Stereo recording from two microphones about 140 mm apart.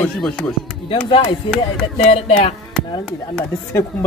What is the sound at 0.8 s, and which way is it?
Speech, 40° left (ahead or behind).